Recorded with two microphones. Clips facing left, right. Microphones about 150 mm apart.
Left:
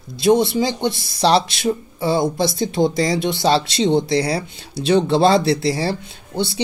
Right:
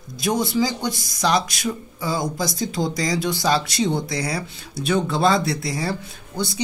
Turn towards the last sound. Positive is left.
turn(degrees=30)  # may be behind; listen again after turning